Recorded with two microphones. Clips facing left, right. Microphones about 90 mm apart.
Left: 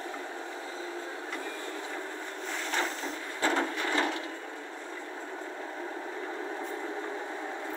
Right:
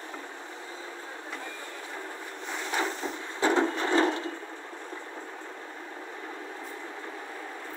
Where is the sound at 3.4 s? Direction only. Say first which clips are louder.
Right 4 dB; 20° right (ahead or behind).